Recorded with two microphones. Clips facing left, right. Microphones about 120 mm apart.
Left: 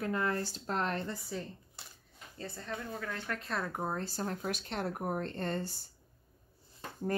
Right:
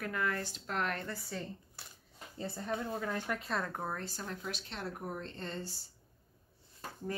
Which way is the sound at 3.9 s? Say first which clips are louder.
Left 5 dB; 40° left (ahead or behind).